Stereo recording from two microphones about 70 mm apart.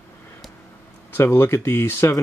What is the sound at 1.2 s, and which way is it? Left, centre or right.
Speech, left.